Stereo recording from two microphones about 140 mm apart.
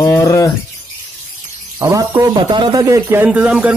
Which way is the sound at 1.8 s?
20° right (ahead or behind).